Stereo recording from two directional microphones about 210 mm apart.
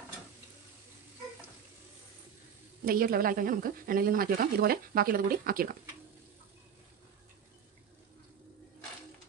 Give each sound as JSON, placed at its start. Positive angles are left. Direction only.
{"t": 2.8, "sound": "speech", "side_deg": -45}